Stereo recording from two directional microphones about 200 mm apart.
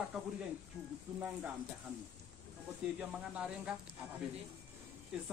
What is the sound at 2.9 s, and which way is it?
Speech, 5° right (ahead or behind).